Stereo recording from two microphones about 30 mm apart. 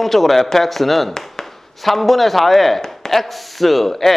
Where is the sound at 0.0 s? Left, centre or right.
Centre.